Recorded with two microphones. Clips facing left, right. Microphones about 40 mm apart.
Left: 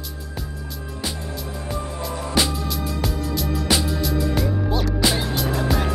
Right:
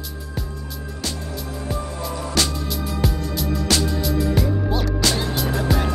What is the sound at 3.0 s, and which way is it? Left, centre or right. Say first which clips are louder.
Music: right 2 dB; centre.